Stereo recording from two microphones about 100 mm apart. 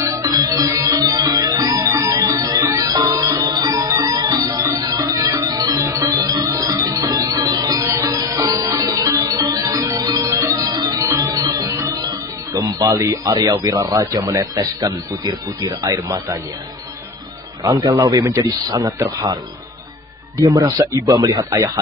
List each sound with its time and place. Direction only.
0.0 s music: 30° right (ahead or behind)
12.5 s speech: 40° right (ahead or behind)
17.6 s speech: 35° right (ahead or behind)
20.4 s speech: 30° right (ahead or behind)